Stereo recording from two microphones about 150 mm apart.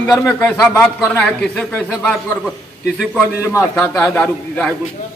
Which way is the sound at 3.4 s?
20° left (ahead or behind).